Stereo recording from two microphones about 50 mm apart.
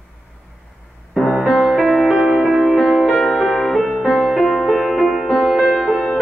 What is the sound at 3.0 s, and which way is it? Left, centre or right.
Music, centre.